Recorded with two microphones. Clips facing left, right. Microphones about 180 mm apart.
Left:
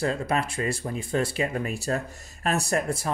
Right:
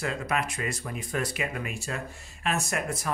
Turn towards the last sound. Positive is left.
turn(degrees=30)  # may be behind; listen again after turning